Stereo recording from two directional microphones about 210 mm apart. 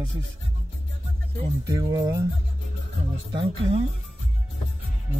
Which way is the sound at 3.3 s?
25° right (ahead or behind).